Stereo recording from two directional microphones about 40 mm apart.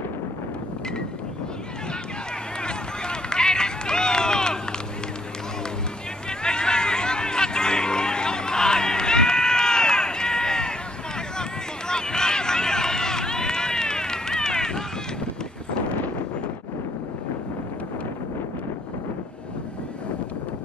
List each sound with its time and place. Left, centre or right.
2.6 s run: left
6.4 s a sound: centre
11.9 s run: centre